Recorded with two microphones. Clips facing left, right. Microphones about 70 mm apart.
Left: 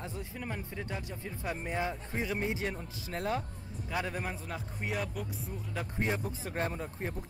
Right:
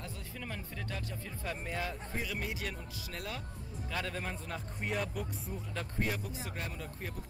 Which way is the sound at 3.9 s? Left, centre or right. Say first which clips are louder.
Left 3 dB; centre.